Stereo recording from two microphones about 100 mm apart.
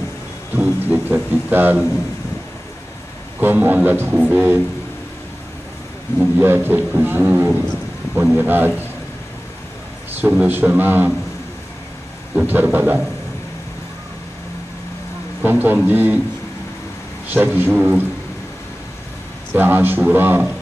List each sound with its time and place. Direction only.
0.6 s a sound: 20° right (ahead or behind)
3.3 s speech: 20° right (ahead or behind)
6.3 s a man's voice: 20° right (ahead or behind)
10.2 s a man's voice: 20° right (ahead or behind)
12.4 s speech: 15° right (ahead or behind)
15.4 s a man's voice: 20° right (ahead or behind)
17.3 s a man's voice: 20° right (ahead or behind)
19.5 s a man's voice: 20° right (ahead or behind)